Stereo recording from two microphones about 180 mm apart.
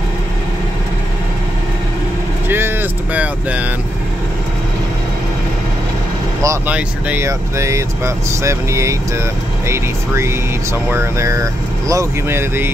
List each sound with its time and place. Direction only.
2.4 s vehicle: 10° right (ahead or behind)
6.4 s speech: 15° right (ahead or behind)